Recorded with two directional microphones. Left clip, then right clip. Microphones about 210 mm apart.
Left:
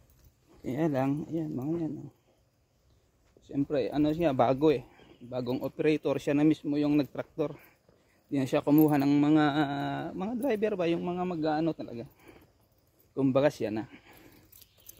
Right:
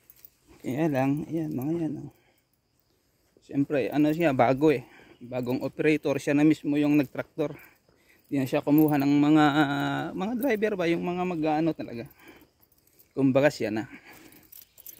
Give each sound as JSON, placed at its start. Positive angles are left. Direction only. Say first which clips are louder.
{"t": 0.7, "sound": "speech", "louder": "right 3 dB", "side_deg": -20}
{"t": 3.4, "sound": "speech", "louder": "right 3 dB", "side_deg": -30}